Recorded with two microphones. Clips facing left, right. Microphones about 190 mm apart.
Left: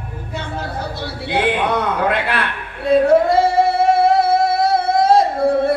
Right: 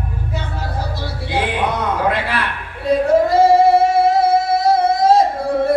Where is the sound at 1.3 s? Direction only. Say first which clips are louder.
Left 2 dB; 60° left (ahead or behind).